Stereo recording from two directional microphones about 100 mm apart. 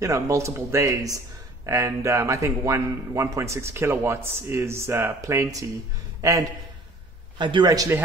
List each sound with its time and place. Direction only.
0.0 s a man's voice: 30° right (ahead or behind)
7.3 s a man's voice: 50° right (ahead or behind)
7.7 s speech: 35° right (ahead or behind)